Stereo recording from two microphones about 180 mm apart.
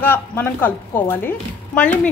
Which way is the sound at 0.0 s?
10° left (ahead or behind).